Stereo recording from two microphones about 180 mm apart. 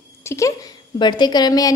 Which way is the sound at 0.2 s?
15° left (ahead or behind).